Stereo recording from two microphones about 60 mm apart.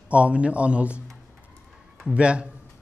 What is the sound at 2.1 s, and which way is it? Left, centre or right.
Speech, centre.